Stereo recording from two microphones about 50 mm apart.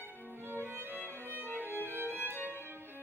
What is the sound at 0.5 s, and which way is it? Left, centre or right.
Violin, right.